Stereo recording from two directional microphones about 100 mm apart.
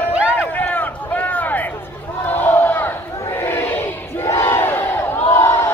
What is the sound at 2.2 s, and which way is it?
Crowd, 20° left (ahead or behind).